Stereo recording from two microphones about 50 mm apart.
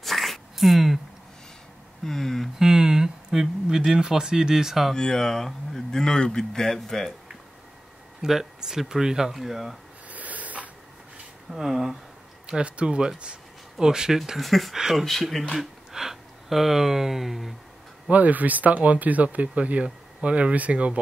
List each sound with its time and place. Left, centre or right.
0.0 s a sound: centre
2.0 s speech: centre
2.6 s speech: centre
4.9 s speech: centre
8.2 s speech: centre
10.0 s a sound: right
11.5 s speech: centre
12.4 s speech: centre
15.5 s speech: centre
18.1 s speech: right